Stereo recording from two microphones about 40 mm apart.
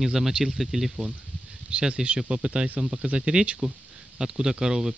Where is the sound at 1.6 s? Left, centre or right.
Right.